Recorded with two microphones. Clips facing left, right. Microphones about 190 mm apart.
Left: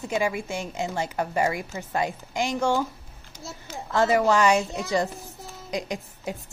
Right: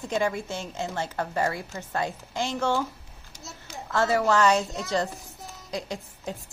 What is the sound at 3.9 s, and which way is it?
A woman's voice, 15° left (ahead or behind).